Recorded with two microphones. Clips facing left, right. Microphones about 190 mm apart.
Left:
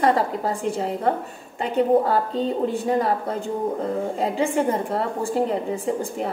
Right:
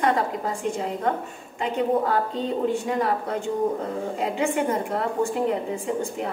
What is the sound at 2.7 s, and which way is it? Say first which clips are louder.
A woman's voice: left 2 dB; 35° left (ahead or behind).